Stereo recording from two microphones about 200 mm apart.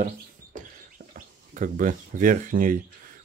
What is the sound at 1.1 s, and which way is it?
Speech, 40° right (ahead or behind).